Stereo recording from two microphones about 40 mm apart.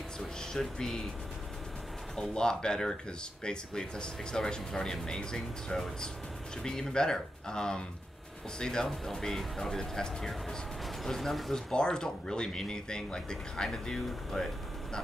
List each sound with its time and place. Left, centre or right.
0.4 s speech: centre
2.1 s speech: left